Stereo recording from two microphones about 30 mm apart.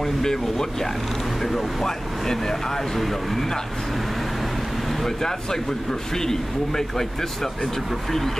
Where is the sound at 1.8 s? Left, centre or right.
Centre.